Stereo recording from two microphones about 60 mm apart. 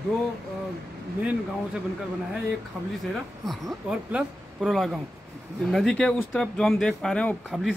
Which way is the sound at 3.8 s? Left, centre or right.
Centre.